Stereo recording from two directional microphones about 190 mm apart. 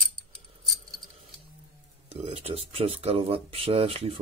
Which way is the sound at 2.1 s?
30° right (ahead or behind).